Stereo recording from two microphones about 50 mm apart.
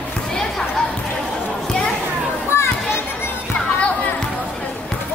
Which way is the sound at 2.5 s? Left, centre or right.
Left.